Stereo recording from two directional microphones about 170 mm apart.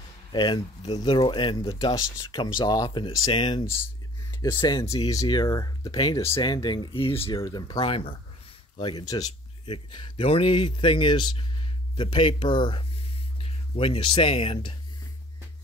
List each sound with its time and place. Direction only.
0.3 s speech: 25° left (ahead or behind)
7.3 s speech: 20° left (ahead or behind)